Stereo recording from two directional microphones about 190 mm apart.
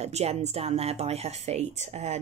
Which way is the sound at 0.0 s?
35° right (ahead or behind).